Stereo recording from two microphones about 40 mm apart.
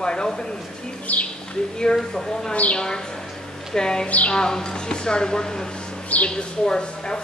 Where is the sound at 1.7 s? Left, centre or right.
Centre.